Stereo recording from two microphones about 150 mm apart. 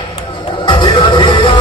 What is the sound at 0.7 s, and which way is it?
Music, 35° left (ahead or behind).